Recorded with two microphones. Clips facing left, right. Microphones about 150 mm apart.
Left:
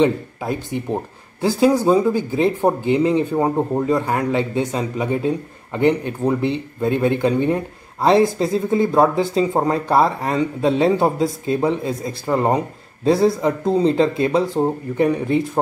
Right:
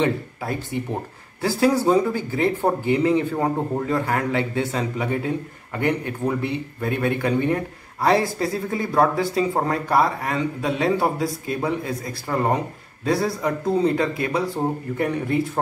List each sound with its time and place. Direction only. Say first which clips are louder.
0.0 s speech: left 5 dB; 20° left (ahead or behind)